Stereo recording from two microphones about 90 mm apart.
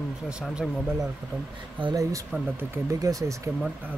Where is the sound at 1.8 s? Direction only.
65° right (ahead or behind).